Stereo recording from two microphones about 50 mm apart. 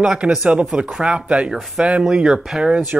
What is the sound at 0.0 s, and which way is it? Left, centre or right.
Speech, centre.